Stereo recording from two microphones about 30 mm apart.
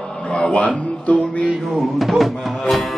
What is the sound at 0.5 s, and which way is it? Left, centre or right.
Speech, left.